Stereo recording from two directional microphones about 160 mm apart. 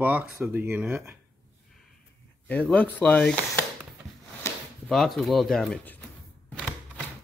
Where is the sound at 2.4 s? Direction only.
10° left (ahead or behind).